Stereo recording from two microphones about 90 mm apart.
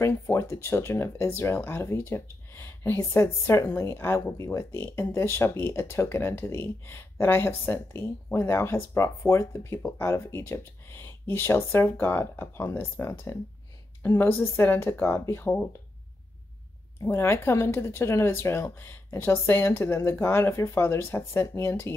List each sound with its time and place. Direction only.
0.0 s speech: 30° left (ahead or behind)
14.1 s speech: 20° left (ahead or behind)
17.0 s speech: 30° left (ahead or behind)